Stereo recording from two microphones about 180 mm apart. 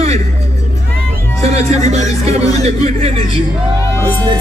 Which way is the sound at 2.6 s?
35° right (ahead or behind).